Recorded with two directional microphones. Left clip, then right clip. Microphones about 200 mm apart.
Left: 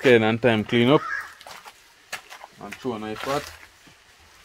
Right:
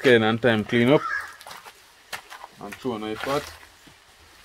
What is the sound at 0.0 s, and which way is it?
Speech, 25° left (ahead or behind).